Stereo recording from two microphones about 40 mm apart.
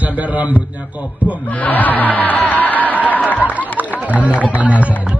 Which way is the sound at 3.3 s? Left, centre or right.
Left.